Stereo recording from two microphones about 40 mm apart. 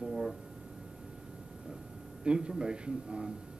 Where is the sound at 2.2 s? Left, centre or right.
Right.